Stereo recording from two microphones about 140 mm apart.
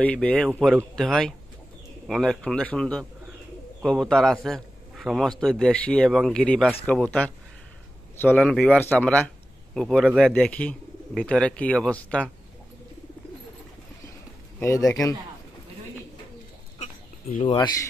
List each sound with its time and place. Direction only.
0.0 s a man's voice: 10° left (ahead or behind)
10.3 s speech: 10° left (ahead or behind)
14.6 s speech: 20° left (ahead or behind)
17.5 s speech: 35° left (ahead or behind)